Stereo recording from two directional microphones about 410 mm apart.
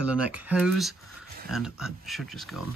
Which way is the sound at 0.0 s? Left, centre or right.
Centre.